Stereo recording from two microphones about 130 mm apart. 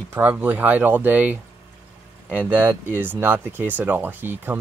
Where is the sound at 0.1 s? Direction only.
15° right (ahead or behind).